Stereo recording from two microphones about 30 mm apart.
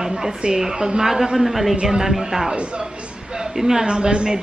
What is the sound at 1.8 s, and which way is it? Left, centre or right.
Speech, centre.